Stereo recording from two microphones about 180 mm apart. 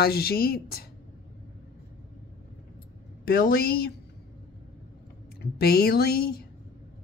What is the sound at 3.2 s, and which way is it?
Speech, 55° left (ahead or behind).